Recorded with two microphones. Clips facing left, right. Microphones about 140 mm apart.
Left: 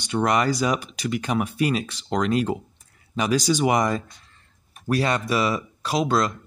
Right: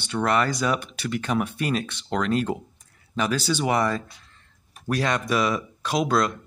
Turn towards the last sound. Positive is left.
turn(degrees=0)  # may be behind; listen again after turning